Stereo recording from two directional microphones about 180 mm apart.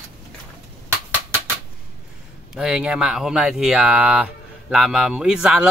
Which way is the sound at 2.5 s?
5° right (ahead or behind).